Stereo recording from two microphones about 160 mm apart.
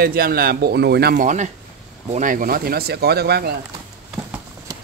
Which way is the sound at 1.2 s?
50° right (ahead or behind).